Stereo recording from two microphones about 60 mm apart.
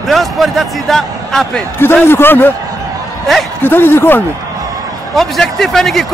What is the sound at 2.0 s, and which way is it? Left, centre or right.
Speech, left.